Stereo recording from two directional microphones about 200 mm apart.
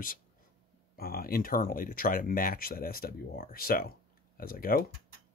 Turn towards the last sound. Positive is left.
turn(degrees=45)  # may be behind; listen again after turning